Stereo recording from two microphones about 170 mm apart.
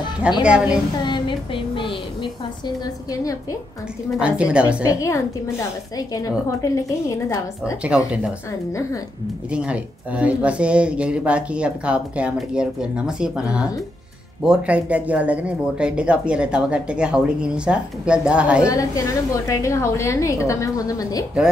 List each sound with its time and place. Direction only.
0.4 s speech: 5° right (ahead or behind)
1.0 s a sound: 25° left (ahead or behind)
4.2 s speech: 5° right (ahead or behind)
4.8 s a woman's voice: 20° left (ahead or behind)
8.1 s speech: 5° right (ahead or behind)
9.5 s speech: 5° right (ahead or behind)
18.7 s a woman's voice: 20° left (ahead or behind)